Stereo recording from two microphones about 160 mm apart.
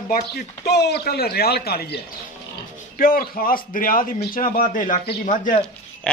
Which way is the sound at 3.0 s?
65° left (ahead or behind).